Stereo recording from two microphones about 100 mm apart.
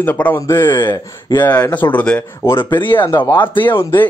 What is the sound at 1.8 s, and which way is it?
Speech, 15° left (ahead or behind).